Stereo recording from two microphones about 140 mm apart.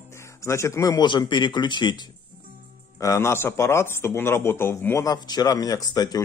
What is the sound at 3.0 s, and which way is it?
A man's voice, 20° left (ahead or behind).